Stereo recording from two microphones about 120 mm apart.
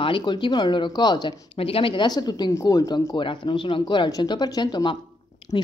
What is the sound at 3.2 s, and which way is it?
Speech, 40° left (ahead or behind).